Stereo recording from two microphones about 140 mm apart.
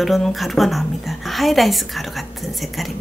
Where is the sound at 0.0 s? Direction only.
Centre (ahead or behind).